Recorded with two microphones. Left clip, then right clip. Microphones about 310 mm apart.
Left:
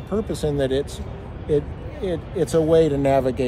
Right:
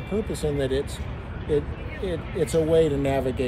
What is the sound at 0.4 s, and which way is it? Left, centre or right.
Speech, centre.